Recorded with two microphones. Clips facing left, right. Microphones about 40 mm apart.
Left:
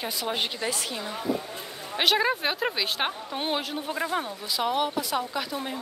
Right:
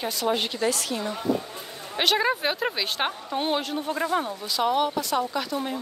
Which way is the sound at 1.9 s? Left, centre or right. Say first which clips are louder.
Right 1 dB; centre.